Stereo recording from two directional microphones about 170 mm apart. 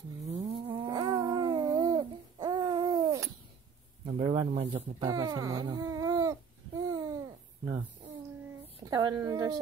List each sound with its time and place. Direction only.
0.3 s cat: 35° right (ahead or behind)
4.0 s a sound: 30° right (ahead or behind)
5.0 s speech: 20° right (ahead or behind)
6.8 s babbling: 20° right (ahead or behind)
8.9 s a woman's voice: 20° right (ahead or behind)